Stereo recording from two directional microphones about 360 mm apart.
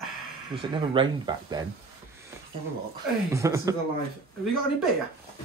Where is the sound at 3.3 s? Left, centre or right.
Centre.